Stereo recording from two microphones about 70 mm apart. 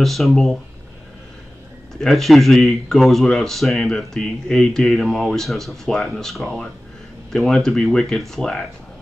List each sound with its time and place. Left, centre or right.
0.0 s speech: centre
2.0 s speech: centre